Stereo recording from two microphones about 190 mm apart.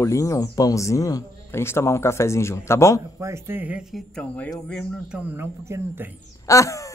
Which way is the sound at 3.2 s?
15° right (ahead or behind).